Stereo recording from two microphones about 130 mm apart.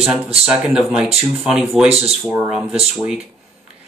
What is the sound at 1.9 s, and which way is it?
Speech, 50° right (ahead or behind).